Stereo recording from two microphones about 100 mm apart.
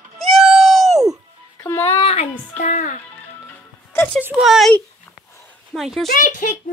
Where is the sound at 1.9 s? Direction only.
90° left.